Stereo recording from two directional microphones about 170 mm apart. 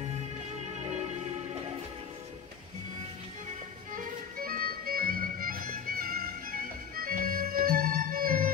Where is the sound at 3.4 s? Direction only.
55° right (ahead or behind).